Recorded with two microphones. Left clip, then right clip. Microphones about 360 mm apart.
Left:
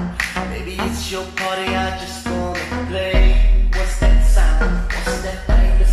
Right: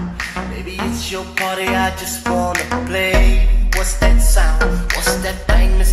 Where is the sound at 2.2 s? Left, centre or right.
Right.